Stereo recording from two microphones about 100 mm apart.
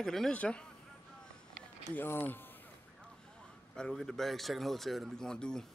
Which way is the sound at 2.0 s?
20° left (ahead or behind).